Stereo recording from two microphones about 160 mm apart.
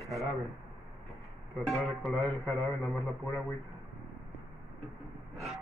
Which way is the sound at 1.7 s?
Centre (ahead or behind).